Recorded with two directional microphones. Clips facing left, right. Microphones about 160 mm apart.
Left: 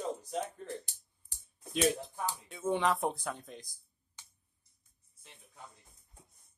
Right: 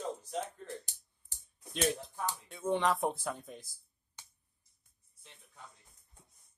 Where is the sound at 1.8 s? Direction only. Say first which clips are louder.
Left 2 dB; 5° left (ahead or behind).